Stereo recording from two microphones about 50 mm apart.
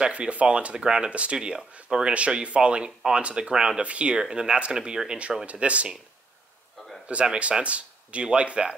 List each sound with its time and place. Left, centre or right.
0.0 s speech: right
2.1 s speech: right
7.1 s speech: right